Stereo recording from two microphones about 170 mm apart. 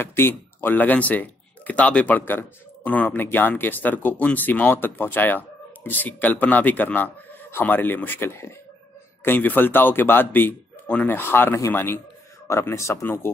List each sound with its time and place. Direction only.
0.0 s speech: 15° left (ahead or behind)